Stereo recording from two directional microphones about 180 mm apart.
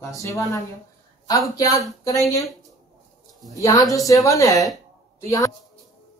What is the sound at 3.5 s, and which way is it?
A woman's voice, 20° left (ahead or behind).